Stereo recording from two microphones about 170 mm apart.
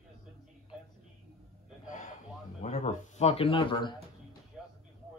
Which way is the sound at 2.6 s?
45° left (ahead or behind).